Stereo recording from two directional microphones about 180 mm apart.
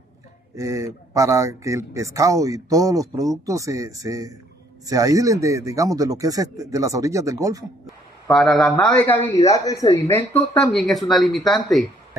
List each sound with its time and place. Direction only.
0.6 s speech: 15° right (ahead or behind)
8.3 s a man's voice: centre (ahead or behind)